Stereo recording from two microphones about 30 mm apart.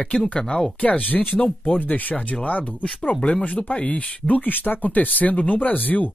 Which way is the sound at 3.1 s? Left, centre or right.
Left.